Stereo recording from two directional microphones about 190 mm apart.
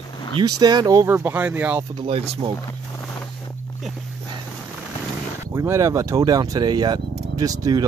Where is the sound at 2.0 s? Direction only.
30° right (ahead or behind).